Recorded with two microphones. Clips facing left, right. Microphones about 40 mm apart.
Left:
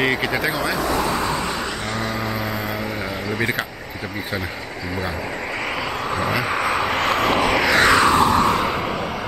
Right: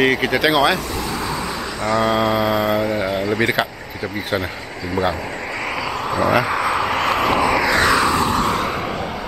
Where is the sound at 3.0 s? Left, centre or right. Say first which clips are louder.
Right 5 dB; centre.